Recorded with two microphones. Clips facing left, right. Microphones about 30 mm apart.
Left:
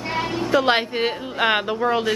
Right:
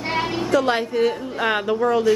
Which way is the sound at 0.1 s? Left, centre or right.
Centre.